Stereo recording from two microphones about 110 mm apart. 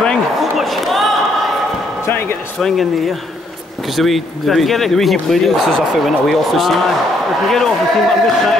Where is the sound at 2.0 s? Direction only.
20° left (ahead or behind).